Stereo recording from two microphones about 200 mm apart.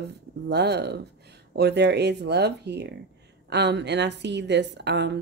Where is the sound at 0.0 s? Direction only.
55° right (ahead or behind).